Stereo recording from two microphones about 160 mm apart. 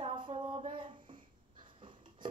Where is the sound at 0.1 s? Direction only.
30° right (ahead or behind).